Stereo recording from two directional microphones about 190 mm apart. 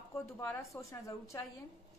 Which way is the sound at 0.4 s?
15° left (ahead or behind).